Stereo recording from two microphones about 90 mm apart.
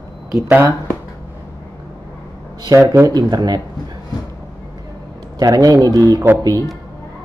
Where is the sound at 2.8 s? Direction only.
30° right (ahead or behind).